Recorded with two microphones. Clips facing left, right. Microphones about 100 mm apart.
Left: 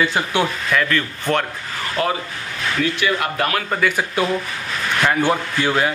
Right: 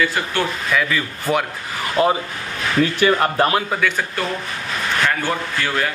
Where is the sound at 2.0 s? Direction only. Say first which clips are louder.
Right 4 dB; 25° right (ahead or behind).